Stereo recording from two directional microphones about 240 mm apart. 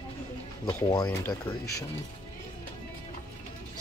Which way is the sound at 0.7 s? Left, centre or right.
Centre.